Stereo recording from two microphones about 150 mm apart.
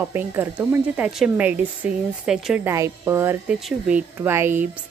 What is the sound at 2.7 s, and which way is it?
Speech, 15° right (ahead or behind).